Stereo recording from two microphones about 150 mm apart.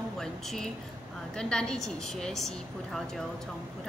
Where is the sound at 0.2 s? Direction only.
5° left (ahead or behind).